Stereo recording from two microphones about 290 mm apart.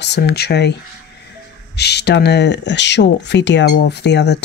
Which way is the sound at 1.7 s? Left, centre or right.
Left.